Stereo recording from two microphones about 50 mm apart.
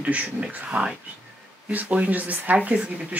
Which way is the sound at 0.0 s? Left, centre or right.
Right.